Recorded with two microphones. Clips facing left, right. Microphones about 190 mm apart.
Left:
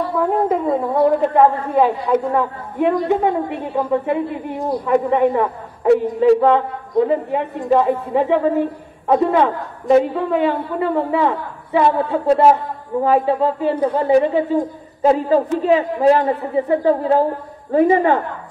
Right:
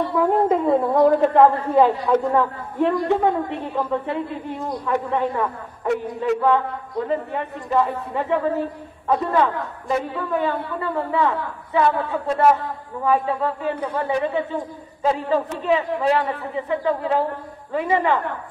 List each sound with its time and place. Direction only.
0.1 s a woman's voice: centre (ahead or behind); by 5.3 s 15° left (ahead or behind)
5.9 s a man's voice: 35° left (ahead or behind)
6.4 s a woman's voice: 20° left (ahead or behind)
14.6 s a man's voice: 40° left (ahead or behind)